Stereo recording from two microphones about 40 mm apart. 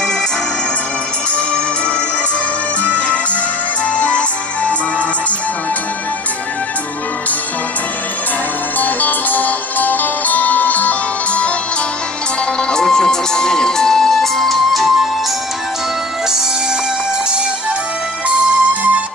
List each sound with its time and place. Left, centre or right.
1.3 s music: left
8.7 s music: left
12.5 s music: centre
18.3 s music: right